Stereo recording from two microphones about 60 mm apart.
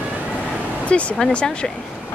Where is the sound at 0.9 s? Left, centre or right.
Centre.